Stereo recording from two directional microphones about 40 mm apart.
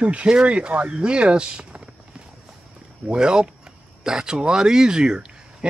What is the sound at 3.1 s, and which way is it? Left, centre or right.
Speech, right.